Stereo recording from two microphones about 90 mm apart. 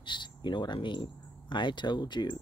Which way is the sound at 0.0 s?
60° left (ahead or behind).